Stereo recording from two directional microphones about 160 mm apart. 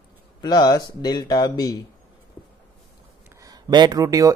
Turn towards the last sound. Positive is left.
turn(degrees=-20)  # may be behind; listen again after turning